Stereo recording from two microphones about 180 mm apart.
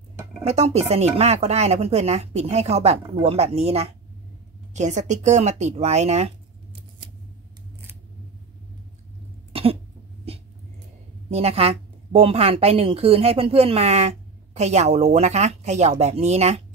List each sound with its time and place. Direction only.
0.4 s a woman's voice: 35° right (ahead or behind)
9.5 s cough: 30° right (ahead or behind)
11.2 s a woman's voice: 35° right (ahead or behind)